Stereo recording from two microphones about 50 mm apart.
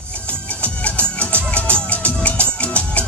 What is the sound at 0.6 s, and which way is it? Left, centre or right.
Music, left.